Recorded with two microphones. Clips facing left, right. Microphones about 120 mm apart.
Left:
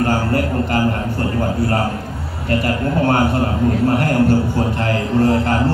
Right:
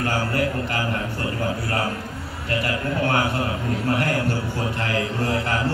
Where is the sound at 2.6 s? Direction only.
40° left (ahead or behind).